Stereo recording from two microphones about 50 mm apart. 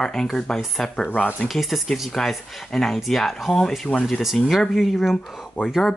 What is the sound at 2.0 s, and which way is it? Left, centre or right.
Speech, centre.